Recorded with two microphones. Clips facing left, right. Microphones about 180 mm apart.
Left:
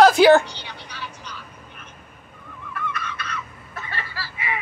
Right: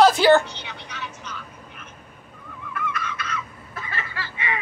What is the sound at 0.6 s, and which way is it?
Telephone, 35° left (ahead or behind).